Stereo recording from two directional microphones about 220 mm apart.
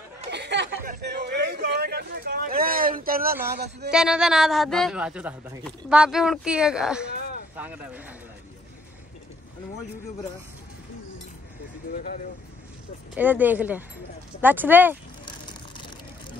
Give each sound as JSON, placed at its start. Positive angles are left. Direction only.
{"t": 0.3, "sound": "a sound", "side_deg": -50}
{"t": 3.4, "sound": "speech", "side_deg": -45}
{"t": 3.9, "sound": "a man's voice", "side_deg": -5}
{"t": 7.2, "sound": "a sound", "side_deg": 45}
{"t": 7.5, "sound": "speech", "side_deg": -5}
{"t": 11.9, "sound": "speech", "side_deg": 40}
{"t": 13.1, "sound": "speech", "side_deg": -10}